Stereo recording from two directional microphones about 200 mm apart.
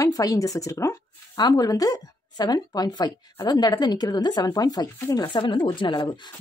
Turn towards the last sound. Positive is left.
turn(degrees=20)  # may be behind; listen again after turning